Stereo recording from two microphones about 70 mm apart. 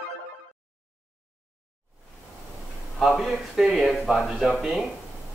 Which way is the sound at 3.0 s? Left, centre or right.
Centre.